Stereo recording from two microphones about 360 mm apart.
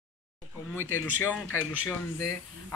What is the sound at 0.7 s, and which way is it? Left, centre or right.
Speech, left.